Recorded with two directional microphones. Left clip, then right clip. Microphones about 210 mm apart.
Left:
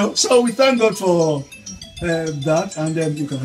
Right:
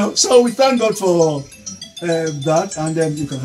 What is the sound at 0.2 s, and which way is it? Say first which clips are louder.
Speech: right 3 dB; 10° left (ahead or behind).